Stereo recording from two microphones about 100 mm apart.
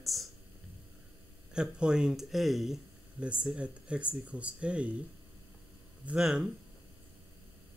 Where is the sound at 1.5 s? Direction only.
10° right (ahead or behind).